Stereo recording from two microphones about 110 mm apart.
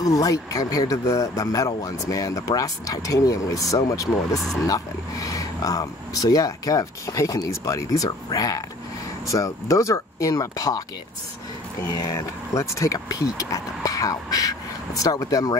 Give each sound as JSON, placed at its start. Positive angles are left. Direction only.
{"t": 0.0, "sound": "speech", "side_deg": 35}
{"t": 12.5, "sound": "speech", "side_deg": 30}